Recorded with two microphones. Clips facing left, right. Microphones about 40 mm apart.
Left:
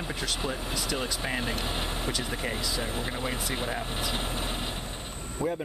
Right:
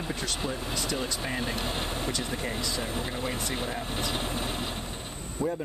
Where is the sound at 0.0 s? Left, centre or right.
Centre.